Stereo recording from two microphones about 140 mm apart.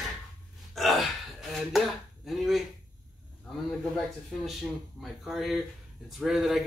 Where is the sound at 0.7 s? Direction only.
Centre (ahead or behind).